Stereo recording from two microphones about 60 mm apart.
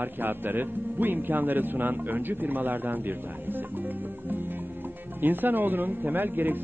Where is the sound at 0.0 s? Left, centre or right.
Right.